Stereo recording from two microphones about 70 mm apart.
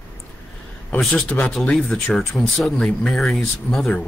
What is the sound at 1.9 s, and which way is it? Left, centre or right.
Speech, centre.